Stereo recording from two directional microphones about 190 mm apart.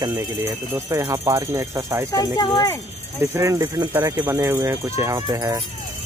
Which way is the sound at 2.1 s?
20° left (ahead or behind).